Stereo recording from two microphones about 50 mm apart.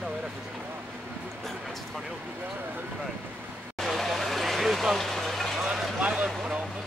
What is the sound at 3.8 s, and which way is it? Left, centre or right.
Vehicle, centre.